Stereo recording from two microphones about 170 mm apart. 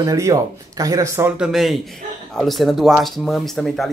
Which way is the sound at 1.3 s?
Centre (ahead or behind).